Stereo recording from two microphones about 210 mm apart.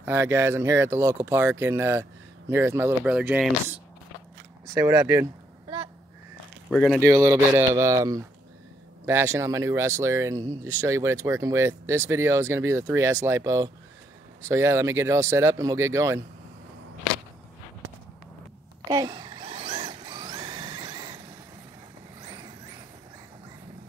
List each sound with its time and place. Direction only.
0.0 s speech: 10° right (ahead or behind)
4.7 s speech: 10° right (ahead or behind)
6.7 s speech: centre (ahead or behind)
7.0 s speech: 15° right (ahead or behind)
18.9 s zipper: 20° right (ahead or behind)
22.2 s vehicle: 20° right (ahead or behind)